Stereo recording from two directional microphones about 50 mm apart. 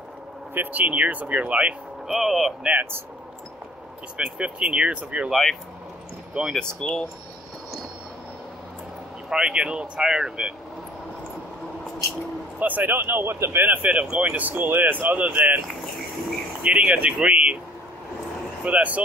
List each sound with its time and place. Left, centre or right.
0.6 s speech: right
2.0 s speech: centre
2.6 s speech: right
4.2 s speech: centre
5.3 s speech: centre
9.3 s speech: centre
12.5 s speech: right
13.8 s speech: right
14.3 s speech: right
16.8 s speech: right
18.6 s speech: right